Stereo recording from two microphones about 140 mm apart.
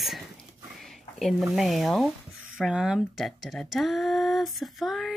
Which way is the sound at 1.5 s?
Centre (ahead or behind).